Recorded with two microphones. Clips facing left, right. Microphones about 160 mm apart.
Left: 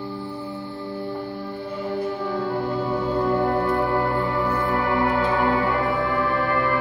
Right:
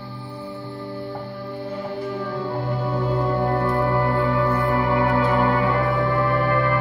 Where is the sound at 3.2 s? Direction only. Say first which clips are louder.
Left 1 dB; centre (ahead or behind).